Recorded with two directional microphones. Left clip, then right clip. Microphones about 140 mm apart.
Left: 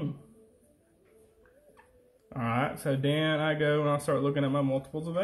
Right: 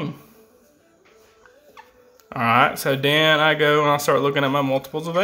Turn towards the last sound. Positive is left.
turn(degrees=-45)  # may be behind; listen again after turning